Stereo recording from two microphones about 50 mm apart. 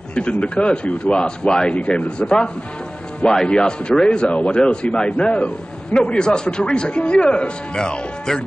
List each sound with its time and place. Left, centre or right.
0.1 s speech: left